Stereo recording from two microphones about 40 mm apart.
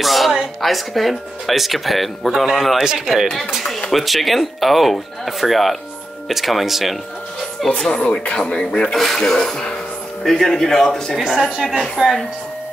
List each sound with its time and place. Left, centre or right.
0.0 s a sound: centre
0.6 s speech: centre
2.8 s a woman's voice: centre
3.5 s a sound: centre
3.9 s speech: centre
7.6 s a man's voice: centre
7.9 s speech: left
8.9 s a man's voice: centre
11.1 s a woman's voice: centre
12.0 s speech: centre